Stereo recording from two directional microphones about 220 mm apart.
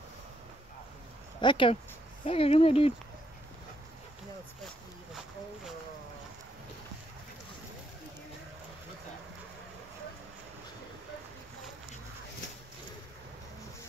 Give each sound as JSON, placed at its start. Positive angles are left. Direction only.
{"t": 1.4, "sound": "speech", "side_deg": 20}